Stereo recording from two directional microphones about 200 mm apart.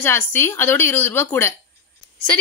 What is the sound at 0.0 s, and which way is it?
A woman's voice, 10° left (ahead or behind).